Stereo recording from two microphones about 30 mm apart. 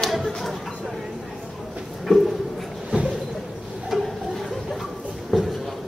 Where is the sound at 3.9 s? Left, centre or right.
Centre.